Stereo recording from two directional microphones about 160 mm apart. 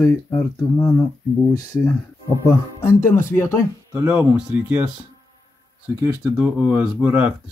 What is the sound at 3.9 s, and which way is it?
Speech, 10° right (ahead or behind).